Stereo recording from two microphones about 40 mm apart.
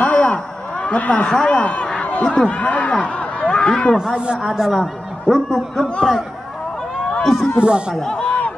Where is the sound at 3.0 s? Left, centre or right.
Left.